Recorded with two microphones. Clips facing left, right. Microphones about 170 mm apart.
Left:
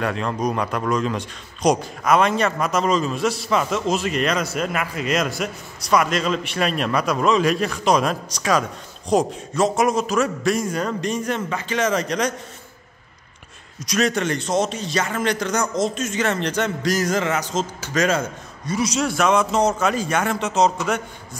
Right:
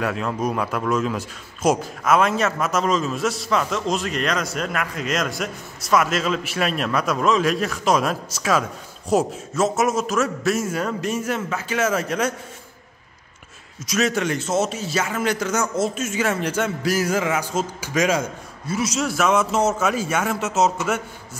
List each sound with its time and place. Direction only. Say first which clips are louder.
0.0 s a man's voice: left 1 dB; 5° right (ahead or behind)
13.8 s a man's voice: left 1 dB; 5° right (ahead or behind)